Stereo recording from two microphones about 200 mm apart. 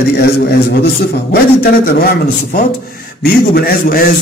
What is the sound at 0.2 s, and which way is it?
A man's voice, 55° left (ahead or behind).